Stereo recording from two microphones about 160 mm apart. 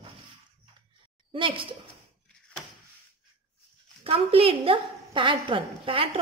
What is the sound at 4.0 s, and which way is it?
A woman's voice, 35° right (ahead or behind).